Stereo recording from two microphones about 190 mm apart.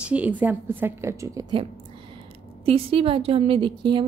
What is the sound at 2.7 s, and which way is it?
A woman's voice, 30° right (ahead or behind).